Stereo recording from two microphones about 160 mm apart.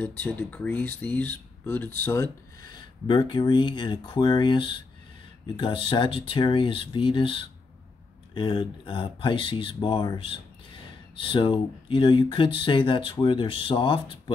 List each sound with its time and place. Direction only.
0.0 s speech: 10° left (ahead or behind)
2.7 s speech: 30° left (ahead or behind)